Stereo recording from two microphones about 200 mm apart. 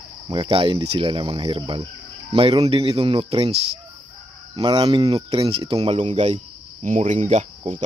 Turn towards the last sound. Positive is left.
turn(degrees=-35)  # may be behind; listen again after turning